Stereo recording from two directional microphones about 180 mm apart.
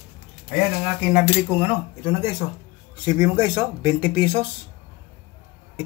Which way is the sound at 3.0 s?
20° right (ahead or behind).